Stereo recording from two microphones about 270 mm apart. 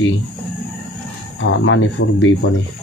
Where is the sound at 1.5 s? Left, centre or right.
Left.